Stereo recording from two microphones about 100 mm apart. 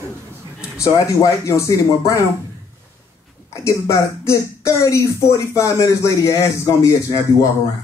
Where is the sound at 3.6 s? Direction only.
30° left (ahead or behind).